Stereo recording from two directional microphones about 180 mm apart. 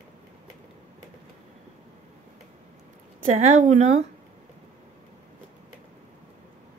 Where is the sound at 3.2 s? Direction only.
40° right (ahead or behind).